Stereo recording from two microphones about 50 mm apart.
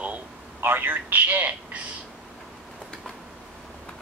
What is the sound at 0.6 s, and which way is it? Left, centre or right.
A man's voice, right.